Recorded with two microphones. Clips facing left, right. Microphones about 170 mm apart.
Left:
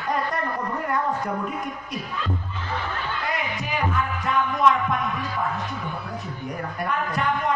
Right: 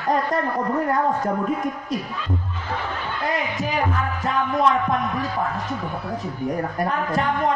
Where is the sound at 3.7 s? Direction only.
40° right (ahead or behind).